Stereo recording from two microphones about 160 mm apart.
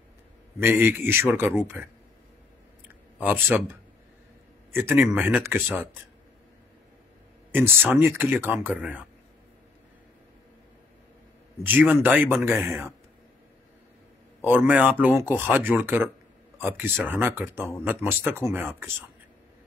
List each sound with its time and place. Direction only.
0.6 s speech: 15° right (ahead or behind)
3.2 s speech: 10° right (ahead or behind)
4.7 s speech: 15° right (ahead or behind)
7.5 s speech: 15° right (ahead or behind)
11.6 s speech: 10° right (ahead or behind)
14.4 s speech: 10° right (ahead or behind)